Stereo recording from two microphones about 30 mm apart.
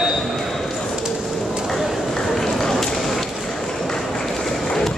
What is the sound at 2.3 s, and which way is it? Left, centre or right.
Run, centre.